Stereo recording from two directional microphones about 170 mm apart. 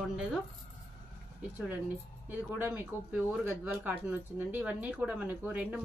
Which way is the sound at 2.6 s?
10° right (ahead or behind).